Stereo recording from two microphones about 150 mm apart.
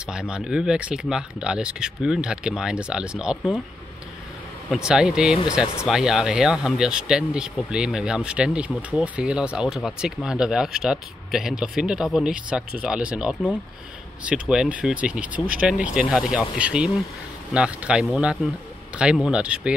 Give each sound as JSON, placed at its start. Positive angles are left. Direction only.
{"t": 0.0, "sound": "speech", "side_deg": -5}
{"t": 4.6, "sound": "speech", "side_deg": -5}